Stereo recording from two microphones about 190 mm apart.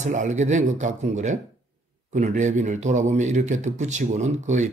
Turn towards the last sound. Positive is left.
turn(degrees=-40)  # may be behind; listen again after turning